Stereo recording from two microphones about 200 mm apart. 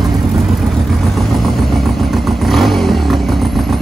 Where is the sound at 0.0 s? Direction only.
Centre (ahead or behind).